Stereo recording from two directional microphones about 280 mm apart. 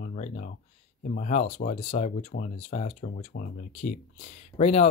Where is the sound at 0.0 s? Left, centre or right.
Left.